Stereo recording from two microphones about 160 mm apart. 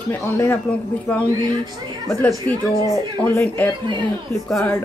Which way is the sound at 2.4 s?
15° left (ahead or behind).